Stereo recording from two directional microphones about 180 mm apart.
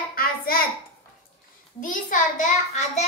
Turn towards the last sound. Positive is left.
turn(degrees=40)  # may be behind; listen again after turning